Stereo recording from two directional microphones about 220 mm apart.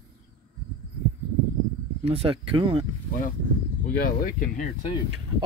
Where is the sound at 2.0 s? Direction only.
25° right (ahead or behind).